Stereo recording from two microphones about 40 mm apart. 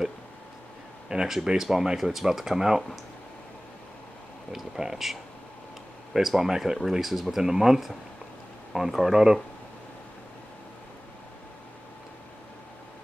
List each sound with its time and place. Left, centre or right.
1.0 s a sound: centre
1.6 s speech: centre
4.5 s speech: centre